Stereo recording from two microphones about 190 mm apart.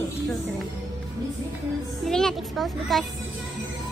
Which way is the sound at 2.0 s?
Centre (ahead or behind).